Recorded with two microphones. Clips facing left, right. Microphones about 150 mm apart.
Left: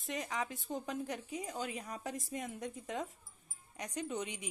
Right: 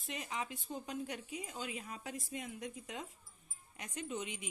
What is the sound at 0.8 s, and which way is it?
A woman's voice, 40° left (ahead or behind).